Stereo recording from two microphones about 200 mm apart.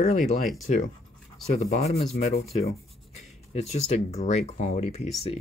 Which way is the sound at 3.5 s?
35° left (ahead or behind).